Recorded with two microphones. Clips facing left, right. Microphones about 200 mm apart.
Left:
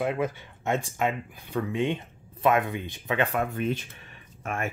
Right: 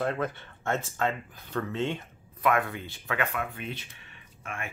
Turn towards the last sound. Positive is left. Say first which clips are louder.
# left 7 dB
turn(degrees=40)  # may be behind; listen again after turning